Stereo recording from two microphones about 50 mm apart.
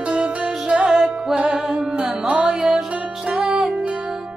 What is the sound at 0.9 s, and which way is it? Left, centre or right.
Music, centre.